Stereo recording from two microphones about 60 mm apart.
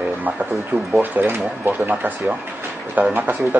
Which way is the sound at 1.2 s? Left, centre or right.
Right.